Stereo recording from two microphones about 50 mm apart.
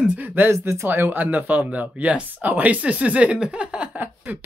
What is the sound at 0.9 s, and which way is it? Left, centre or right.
Speech, right.